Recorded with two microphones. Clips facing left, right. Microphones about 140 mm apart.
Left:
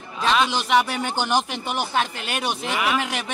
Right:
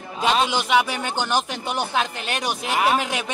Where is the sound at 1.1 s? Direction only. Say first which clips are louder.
Left 1 dB; 10° left (ahead or behind).